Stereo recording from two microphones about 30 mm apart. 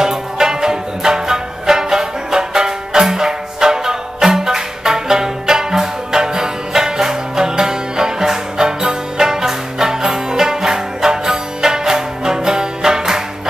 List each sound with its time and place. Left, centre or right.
0.0 s music: centre